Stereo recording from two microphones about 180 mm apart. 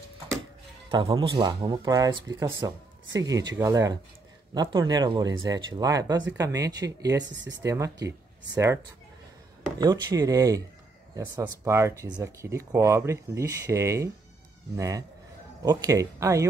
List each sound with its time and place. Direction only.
0.8 s speech: 25° right (ahead or behind)
9.8 s speech: 20° right (ahead or behind)